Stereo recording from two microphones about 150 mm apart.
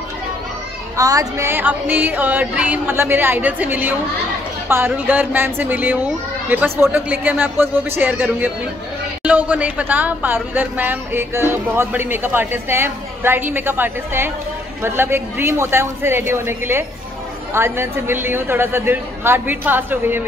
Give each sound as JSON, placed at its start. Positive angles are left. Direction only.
{"t": 0.9, "sound": "speech", "side_deg": -20}